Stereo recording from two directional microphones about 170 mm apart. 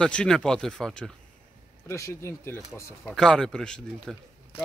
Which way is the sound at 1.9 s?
15° left (ahead or behind).